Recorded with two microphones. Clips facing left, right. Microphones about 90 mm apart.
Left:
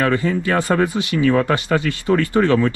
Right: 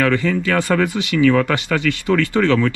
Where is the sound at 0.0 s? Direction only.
25° left (ahead or behind).